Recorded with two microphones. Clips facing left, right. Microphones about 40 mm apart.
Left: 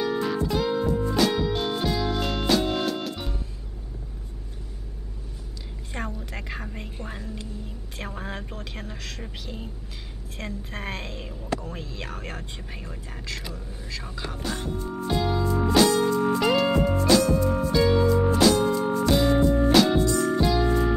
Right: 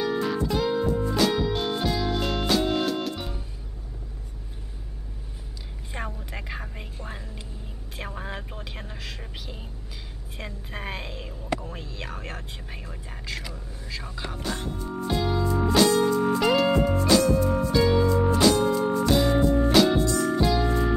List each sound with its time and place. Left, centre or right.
0.0 s music: centre
5.9 s a sound: centre
6.3 s music: centre
8.0 s a sound: centre
10.3 s speech: centre
13.3 s speech: centre
14.3 s speech: centre
15.0 s music: centre